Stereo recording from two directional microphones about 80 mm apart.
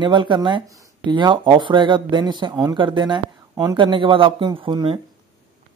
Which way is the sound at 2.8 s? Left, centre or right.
Right.